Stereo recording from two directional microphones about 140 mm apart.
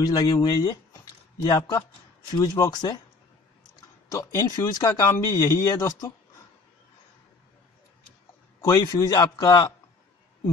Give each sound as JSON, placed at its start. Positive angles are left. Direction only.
{"t": 0.0, "sound": "speech", "side_deg": 25}
{"t": 4.1, "sound": "speech", "side_deg": 25}
{"t": 8.5, "sound": "speech", "side_deg": 25}